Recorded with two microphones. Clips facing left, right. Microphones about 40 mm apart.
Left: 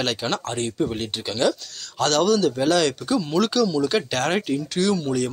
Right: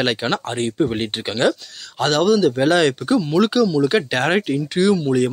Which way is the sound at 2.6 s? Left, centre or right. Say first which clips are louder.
Right 4 dB; right.